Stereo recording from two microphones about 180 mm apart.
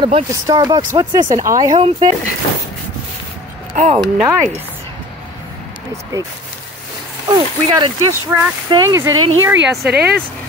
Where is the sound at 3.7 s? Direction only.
40° right (ahead or behind).